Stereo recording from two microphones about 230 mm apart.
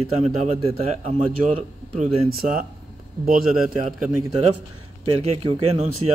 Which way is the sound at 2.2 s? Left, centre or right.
Right.